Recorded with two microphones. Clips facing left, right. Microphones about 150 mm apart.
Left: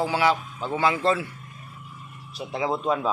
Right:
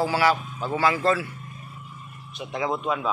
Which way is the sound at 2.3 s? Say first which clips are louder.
Left 1 dB; 30° left (ahead or behind).